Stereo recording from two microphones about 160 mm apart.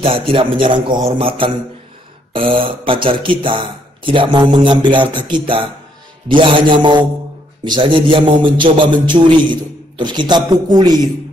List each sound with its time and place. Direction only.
0.3 s speech: 30° right (ahead or behind)
2.3 s mantra: 35° right (ahead or behind)
2.8 s a man's voice: 35° right (ahead or behind)